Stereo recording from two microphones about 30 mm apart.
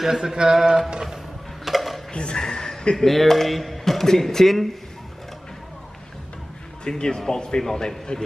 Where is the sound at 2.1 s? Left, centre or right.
Left.